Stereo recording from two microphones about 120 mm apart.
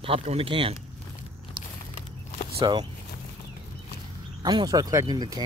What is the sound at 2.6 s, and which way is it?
Speech, 40° right (ahead or behind).